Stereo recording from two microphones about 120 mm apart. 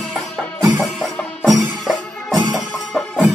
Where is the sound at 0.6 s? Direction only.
30° right (ahead or behind).